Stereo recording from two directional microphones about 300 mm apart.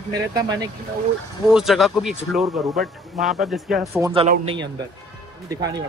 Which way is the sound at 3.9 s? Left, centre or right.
Centre.